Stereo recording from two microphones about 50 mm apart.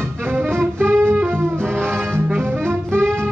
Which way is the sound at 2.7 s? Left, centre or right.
Right.